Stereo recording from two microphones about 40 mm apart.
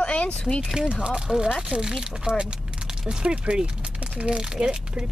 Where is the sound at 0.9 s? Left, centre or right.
Right.